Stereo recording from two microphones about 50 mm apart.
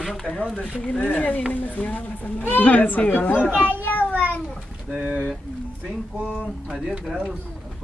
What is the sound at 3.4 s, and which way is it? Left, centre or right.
Speech, right.